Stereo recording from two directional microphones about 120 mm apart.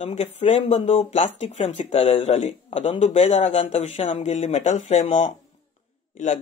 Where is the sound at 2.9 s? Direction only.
70° left (ahead or behind).